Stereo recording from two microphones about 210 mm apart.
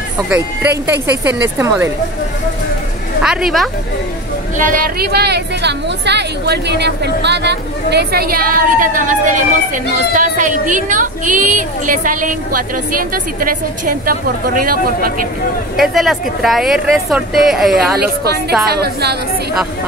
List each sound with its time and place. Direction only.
0.3 s speech: 10° right (ahead or behind)
3.2 s speech: 5° right (ahead or behind)
4.6 s a woman's voice: 40° right (ahead or behind)
15.7 s speech: centre (ahead or behind)
17.9 s speech: 50° right (ahead or behind)